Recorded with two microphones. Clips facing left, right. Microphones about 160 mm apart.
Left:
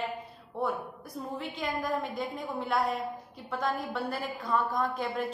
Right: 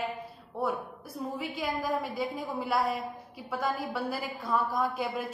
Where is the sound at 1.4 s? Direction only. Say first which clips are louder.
Even; 5° right (ahead or behind).